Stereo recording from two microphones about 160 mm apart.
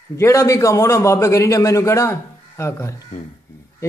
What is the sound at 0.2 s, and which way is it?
A man's voice, 20° left (ahead or behind).